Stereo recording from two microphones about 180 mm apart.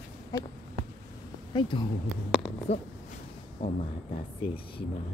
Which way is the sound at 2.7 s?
35° left (ahead or behind).